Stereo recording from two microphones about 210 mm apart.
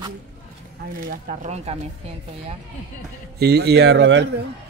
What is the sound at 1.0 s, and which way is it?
Speech, 40° right (ahead or behind).